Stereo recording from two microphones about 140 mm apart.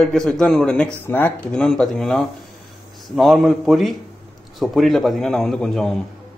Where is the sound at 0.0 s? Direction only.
5° left (ahead or behind).